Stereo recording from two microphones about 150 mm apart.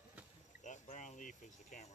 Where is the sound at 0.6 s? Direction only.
55° left (ahead or behind).